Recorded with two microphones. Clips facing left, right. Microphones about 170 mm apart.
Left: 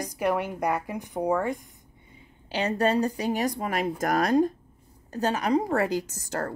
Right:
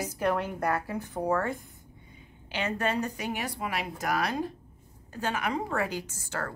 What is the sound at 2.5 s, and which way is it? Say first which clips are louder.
A woman's voice: left 5 dB; 35° left (ahead or behind).